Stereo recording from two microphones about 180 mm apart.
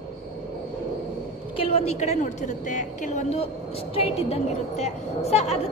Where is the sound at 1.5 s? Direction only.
30° left (ahead or behind).